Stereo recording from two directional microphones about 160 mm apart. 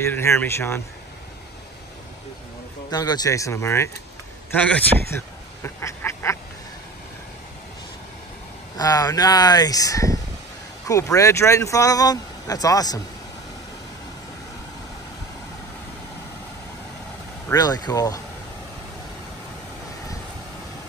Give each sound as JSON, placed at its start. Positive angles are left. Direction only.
{"t": 0.0, "sound": "speech", "side_deg": 15}
{"t": 2.9, "sound": "speech", "side_deg": 25}
{"t": 8.7, "sound": "speech", "side_deg": 20}
{"t": 17.5, "sound": "speech", "side_deg": 25}